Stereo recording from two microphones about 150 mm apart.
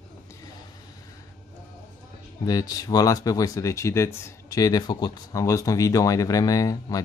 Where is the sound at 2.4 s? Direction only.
25° left (ahead or behind).